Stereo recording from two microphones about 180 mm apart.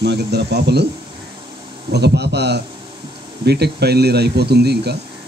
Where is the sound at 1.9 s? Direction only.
70° right (ahead or behind).